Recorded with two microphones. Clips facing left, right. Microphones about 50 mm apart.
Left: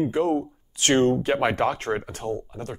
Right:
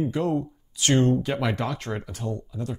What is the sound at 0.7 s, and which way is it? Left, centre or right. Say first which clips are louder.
Speech: left 2 dB; left.